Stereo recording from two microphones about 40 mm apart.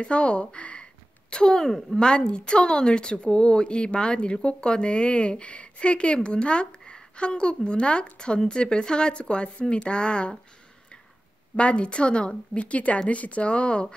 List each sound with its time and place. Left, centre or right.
0.0 s speech: left; by 2.0 s centre
2.0 s speech: left
11.5 s speech: left